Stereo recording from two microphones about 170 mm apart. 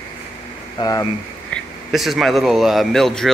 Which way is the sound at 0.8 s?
20° left (ahead or behind).